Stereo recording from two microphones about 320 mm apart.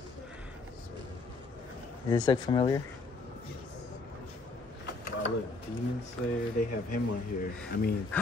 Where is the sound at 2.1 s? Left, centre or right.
Centre.